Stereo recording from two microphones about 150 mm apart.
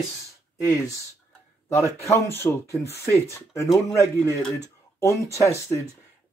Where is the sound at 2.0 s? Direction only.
20° left (ahead or behind).